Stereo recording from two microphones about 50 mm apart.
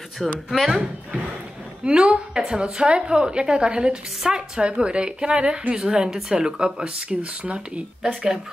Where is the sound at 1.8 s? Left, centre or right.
Right.